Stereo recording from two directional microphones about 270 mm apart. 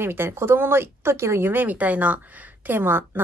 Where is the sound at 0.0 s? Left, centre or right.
Centre.